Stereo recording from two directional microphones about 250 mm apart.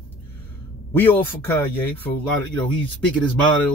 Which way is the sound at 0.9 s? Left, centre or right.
Centre.